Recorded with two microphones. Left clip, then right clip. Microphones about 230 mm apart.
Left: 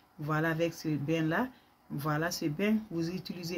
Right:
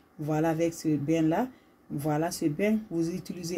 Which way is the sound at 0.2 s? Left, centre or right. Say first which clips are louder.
Right 4 dB; centre.